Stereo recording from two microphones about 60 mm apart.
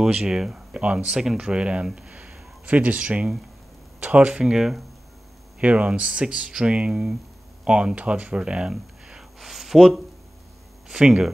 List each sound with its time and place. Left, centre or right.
0.0 s speech: centre
2.0 s a sound: right
4.0 s speech: right
4.4 s speech: centre
5.6 s speech: right; by 10.0 s centre
10.9 s speech: centre